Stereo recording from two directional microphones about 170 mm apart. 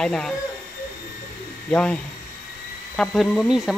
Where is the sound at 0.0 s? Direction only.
5° left (ahead or behind).